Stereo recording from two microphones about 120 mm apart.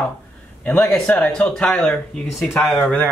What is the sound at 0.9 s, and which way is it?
A man's voice, 10° left (ahead or behind).